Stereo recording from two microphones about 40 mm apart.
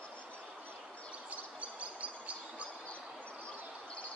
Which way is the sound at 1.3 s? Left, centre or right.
Right.